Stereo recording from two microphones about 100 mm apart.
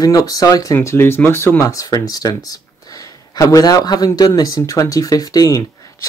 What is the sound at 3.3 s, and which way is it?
Speech, 35° left (ahead or behind).